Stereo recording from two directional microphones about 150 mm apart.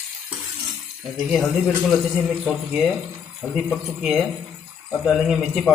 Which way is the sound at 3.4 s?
Centre (ahead or behind).